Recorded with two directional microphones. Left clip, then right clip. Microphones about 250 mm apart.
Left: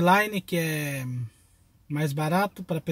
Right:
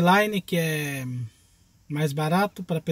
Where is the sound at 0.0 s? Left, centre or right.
Centre.